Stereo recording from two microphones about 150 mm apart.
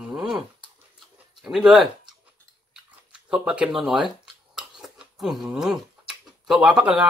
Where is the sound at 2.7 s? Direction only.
5° right (ahead or behind).